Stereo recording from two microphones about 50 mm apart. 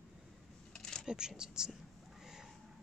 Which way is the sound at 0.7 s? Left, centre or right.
Centre.